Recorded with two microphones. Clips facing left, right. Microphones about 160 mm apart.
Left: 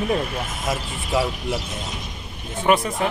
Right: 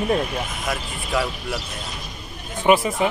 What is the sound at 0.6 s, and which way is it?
Speech, 20° left (ahead or behind).